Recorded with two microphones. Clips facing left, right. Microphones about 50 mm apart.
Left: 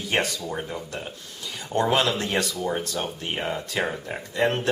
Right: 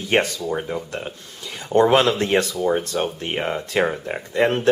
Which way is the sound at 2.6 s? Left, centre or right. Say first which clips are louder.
Right 6 dB; centre.